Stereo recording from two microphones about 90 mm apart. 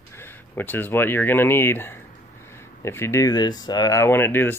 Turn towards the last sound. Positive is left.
turn(degrees=25)  # may be behind; listen again after turning